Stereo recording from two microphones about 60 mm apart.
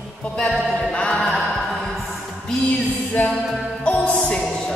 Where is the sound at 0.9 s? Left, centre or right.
Centre.